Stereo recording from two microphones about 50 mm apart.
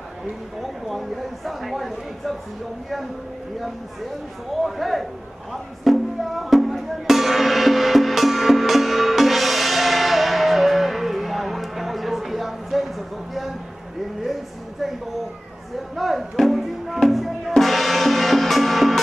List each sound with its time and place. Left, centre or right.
0.6 s speech: centre
4.6 s speech: centre
5.5 s music: centre
14.2 s speech: centre
16.0 s music: centre